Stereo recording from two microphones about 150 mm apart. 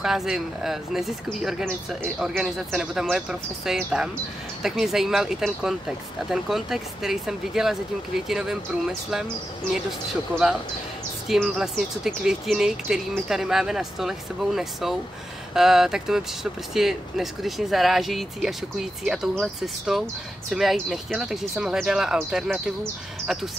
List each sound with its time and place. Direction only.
0.0 s speech: 5° right (ahead or behind)
11.2 s speech: centre (ahead or behind)